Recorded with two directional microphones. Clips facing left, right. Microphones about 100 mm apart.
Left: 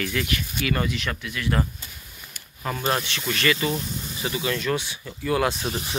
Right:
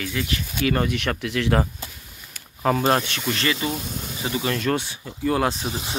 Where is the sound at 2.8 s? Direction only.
40° right (ahead or behind).